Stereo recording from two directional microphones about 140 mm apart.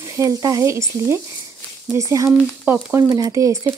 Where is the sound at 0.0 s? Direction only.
20° right (ahead or behind).